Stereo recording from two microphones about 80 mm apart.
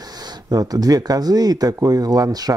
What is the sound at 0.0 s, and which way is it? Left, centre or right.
Speech, right.